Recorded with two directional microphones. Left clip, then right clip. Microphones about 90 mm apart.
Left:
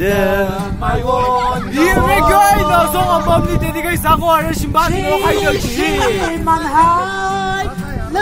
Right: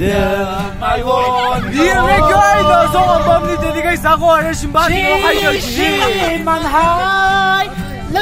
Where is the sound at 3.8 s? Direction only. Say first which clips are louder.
Right 2 dB; 45° left (ahead or behind).